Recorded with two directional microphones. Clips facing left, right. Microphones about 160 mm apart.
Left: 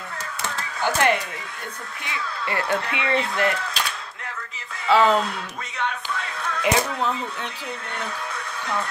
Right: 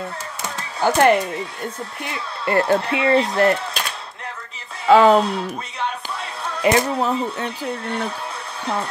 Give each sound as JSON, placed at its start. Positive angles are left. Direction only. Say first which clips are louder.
{"t": 0.7, "sound": "speech", "louder": "right 6 dB", "side_deg": -40}
{"t": 2.4, "sound": "speech", "louder": "right 8 dB", "side_deg": -40}
{"t": 4.8, "sound": "speech", "louder": "right 6 dB", "side_deg": -45}
{"t": 5.2, "sound": "speech", "louder": "right 6 dB", "side_deg": -35}